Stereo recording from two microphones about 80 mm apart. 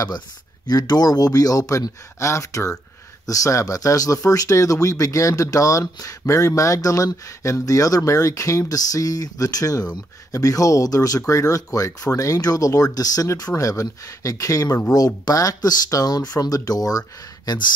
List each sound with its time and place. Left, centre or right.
0.7 s speech: left
17.5 s speech: left